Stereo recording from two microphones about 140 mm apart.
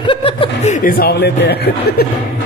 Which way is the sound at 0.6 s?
70° left (ahead or behind).